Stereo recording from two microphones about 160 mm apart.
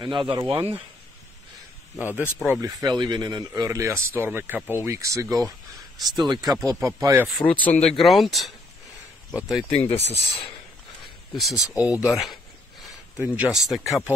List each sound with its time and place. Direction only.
0.0 s speech: 30° right (ahead or behind)
2.0 s speech: 10° right (ahead or behind)
2.6 s speech: 25° right (ahead or behind)
7.2 s speech: 5° left (ahead or behind)
9.8 s speech: 40° left (ahead or behind)
11.3 s speech: centre (ahead or behind)
11.9 s speech: 20° left (ahead or behind)
13.2 s speech: 5° right (ahead or behind)